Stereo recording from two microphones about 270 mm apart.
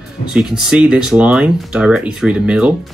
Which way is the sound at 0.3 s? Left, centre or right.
Centre.